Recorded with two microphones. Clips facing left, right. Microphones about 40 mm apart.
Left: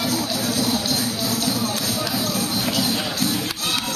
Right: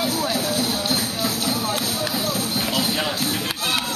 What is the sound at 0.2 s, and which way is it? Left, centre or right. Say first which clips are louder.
Music: right 1 dB; right.